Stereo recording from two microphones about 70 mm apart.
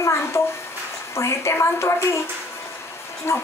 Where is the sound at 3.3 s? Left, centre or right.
Left.